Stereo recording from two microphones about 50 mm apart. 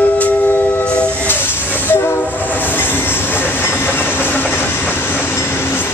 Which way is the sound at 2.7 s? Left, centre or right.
Left.